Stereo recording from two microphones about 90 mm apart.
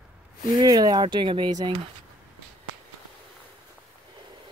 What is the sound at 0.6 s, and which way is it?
Speech, 50° right (ahead or behind).